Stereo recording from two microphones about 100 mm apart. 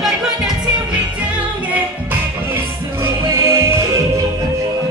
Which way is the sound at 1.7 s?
20° right (ahead or behind).